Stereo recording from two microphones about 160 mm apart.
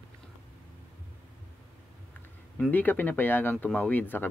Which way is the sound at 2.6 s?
10° left (ahead or behind).